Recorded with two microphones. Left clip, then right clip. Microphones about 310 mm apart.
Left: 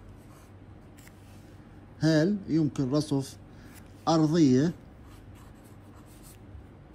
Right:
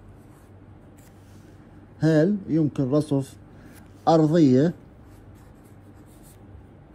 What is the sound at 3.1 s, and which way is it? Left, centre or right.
Speech, right.